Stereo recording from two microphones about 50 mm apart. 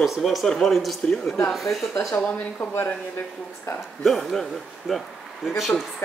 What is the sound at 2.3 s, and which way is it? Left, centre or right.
Speech, left.